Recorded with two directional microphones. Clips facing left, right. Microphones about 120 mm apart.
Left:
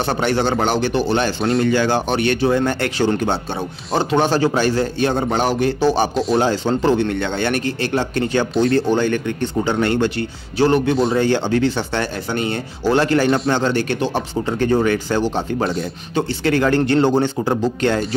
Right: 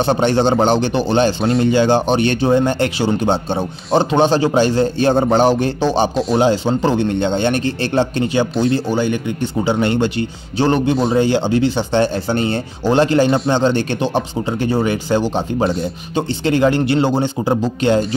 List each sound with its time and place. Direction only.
0.0 s speech: 25° right (ahead or behind)
6.3 s speech: 15° right (ahead or behind)
8.7 s speech: 15° right (ahead or behind); by 12.5 s 30° right (ahead or behind)
12.8 s speech: 20° right (ahead or behind)